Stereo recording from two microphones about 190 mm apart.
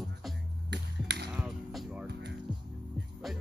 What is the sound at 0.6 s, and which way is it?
Finger snapping, 60° right (ahead or behind).